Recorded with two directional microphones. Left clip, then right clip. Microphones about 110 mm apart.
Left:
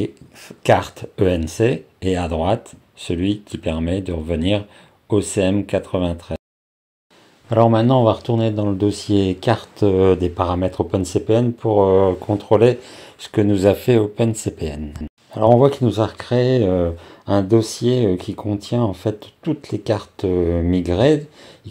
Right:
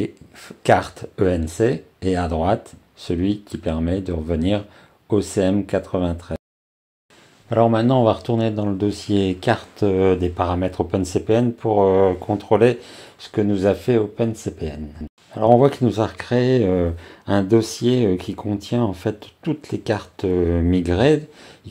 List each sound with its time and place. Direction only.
0.0 s speech: centre (ahead or behind)
7.4 s speech: 10° left (ahead or behind)
8.0 s speech: centre (ahead or behind)
13.2 s speech: 20° left (ahead or behind)
15.6 s speech: centre (ahead or behind)